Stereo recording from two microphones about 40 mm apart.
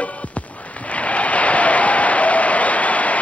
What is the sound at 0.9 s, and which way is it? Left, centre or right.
Applause, left.